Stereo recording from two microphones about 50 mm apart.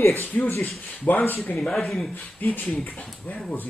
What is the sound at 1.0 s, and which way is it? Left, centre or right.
Speech, left.